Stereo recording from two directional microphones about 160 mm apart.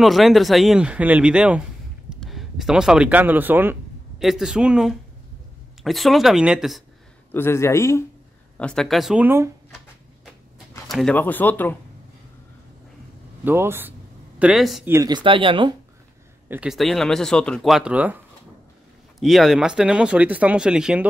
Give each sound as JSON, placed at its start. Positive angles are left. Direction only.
{"t": 0.0, "sound": "speech", "side_deg": 0}
{"t": 4.2, "sound": "speech", "side_deg": 0}
{"t": 7.3, "sound": "speech", "side_deg": 15}
{"t": 8.5, "sound": "speech", "side_deg": 5}
{"t": 10.9, "sound": "speech", "side_deg": 5}
{"t": 13.4, "sound": "speech", "side_deg": -15}
{"t": 14.4, "sound": "speech", "side_deg": 0}
{"t": 14.9, "sound": "speech", "side_deg": -20}
{"t": 16.4, "sound": "speech", "side_deg": -5}